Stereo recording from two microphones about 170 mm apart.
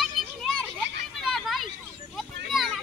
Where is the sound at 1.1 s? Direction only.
Centre (ahead or behind).